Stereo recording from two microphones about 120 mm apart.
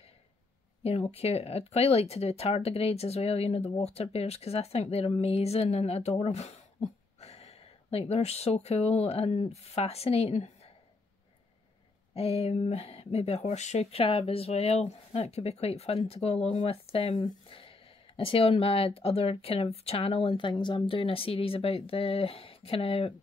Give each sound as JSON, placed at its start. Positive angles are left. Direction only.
{"t": 0.8, "sound": "speech", "side_deg": 60}
{"t": 12.1, "sound": "speech", "side_deg": 60}